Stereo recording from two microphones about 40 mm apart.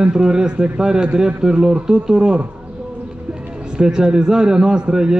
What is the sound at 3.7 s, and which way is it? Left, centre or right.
A man's voice, centre.